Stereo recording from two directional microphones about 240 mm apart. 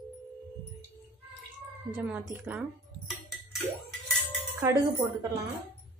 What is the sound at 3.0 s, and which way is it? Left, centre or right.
Music, centre.